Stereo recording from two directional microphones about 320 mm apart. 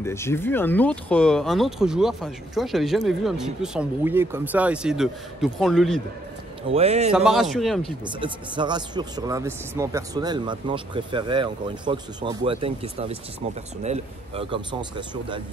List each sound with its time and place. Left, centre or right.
0.0 s speech: centre
6.7 s a man's voice: centre
7.1 s speech: centre
8.0 s speech: centre